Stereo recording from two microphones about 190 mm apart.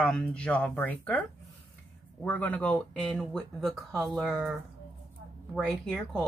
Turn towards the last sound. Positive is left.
turn(degrees=0)  # may be behind; listen again after turning